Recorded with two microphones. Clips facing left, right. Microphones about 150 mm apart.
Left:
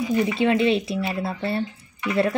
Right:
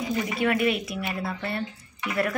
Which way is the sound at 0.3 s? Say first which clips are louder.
Left 3 dB; 25° left (ahead or behind).